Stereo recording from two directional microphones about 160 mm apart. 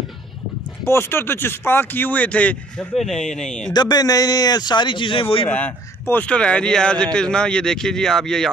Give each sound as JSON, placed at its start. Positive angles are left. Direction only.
{"t": 0.8, "sound": "speech", "side_deg": 15}
{"t": 3.7, "sound": "a man's voice", "side_deg": 25}
{"t": 5.5, "sound": "speech", "side_deg": 10}